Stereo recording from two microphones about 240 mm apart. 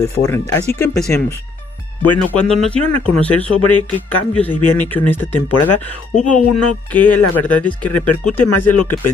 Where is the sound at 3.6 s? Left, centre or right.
Left.